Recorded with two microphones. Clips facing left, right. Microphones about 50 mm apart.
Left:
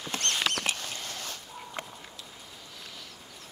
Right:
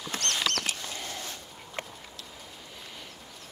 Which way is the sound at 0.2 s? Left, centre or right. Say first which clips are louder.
Left 1 dB; left.